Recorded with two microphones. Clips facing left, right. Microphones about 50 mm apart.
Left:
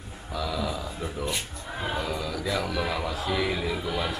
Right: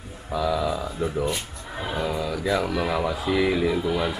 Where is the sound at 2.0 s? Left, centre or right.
Centre.